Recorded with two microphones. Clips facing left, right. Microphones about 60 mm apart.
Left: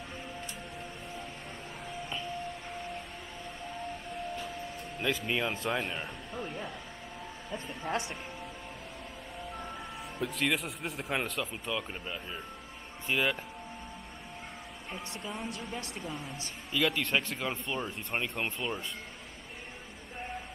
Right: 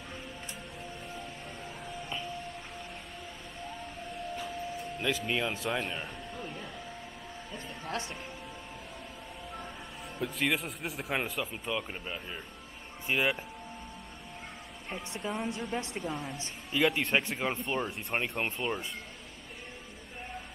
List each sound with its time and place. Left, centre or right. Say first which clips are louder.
5.0 s speech: even; centre
10.1 s speech: even; centre
15.0 s speech: right 4 dB; centre
16.3 s speech: even; right